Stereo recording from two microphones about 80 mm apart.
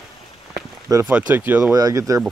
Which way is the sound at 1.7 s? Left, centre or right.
Right.